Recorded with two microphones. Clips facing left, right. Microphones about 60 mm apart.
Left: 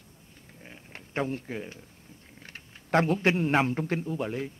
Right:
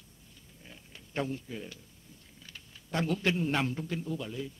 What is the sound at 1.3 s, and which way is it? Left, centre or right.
Speech, left.